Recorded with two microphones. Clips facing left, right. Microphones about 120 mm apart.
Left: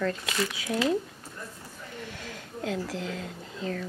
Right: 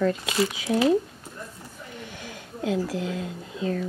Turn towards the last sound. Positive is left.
turn(degrees=-15)  # may be behind; listen again after turning